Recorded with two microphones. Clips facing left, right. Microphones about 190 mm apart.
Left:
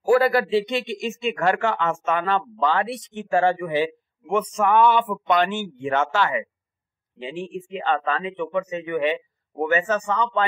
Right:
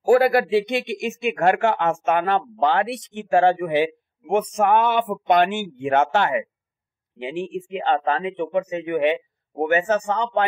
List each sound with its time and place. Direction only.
0.1 s a man's voice: 55° right (ahead or behind)